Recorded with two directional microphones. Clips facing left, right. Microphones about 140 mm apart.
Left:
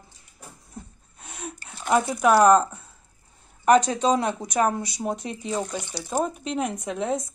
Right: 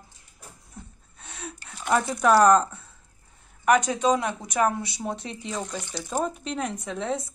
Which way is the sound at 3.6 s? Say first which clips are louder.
Left 2 dB; 25° left (ahead or behind).